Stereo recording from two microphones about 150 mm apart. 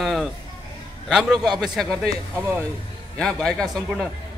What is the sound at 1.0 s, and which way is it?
Speech, centre (ahead or behind).